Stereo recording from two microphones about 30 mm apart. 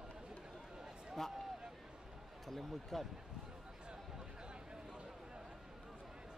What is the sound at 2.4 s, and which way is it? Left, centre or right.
Basketball bounce, centre.